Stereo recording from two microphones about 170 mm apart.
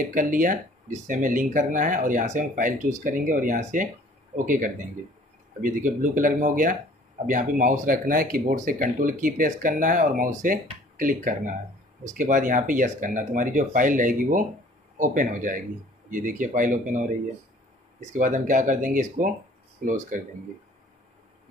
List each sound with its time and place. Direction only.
0.1 s speech: 50° right (ahead or behind)
18.1 s speech: 50° right (ahead or behind)